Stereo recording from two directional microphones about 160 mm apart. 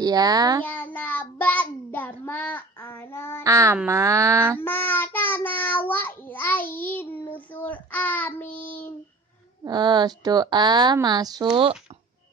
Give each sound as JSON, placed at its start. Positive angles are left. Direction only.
{"t": 0.0, "sound": "speech", "side_deg": -25}
{"t": 0.7, "sound": "child singing", "side_deg": 10}
{"t": 3.4, "sound": "speech", "side_deg": -20}
{"t": 4.6, "sound": "child singing", "side_deg": 10}
{"t": 9.7, "sound": "speech", "side_deg": -25}